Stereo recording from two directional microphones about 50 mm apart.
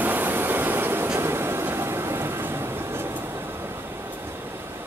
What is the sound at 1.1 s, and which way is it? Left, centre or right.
Vehicle, right.